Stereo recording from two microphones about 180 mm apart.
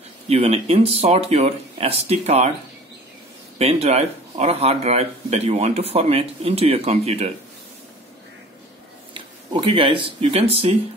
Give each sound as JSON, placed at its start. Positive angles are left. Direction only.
{"t": 0.3, "sound": "speech", "side_deg": -35}
{"t": 3.5, "sound": "speech", "side_deg": -35}
{"t": 9.1, "sound": "speech", "side_deg": -30}